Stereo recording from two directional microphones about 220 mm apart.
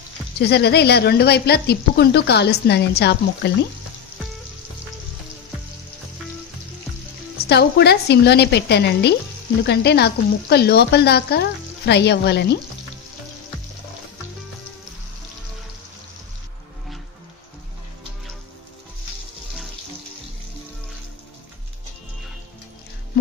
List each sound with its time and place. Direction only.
0.4 s a woman's voice: 45° left (ahead or behind)
7.3 s a woman's voice: 50° left (ahead or behind)